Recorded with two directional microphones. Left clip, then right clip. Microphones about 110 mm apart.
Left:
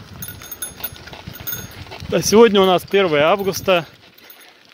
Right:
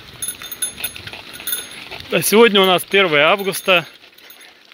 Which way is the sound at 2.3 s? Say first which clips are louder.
Even; 40° left (ahead or behind).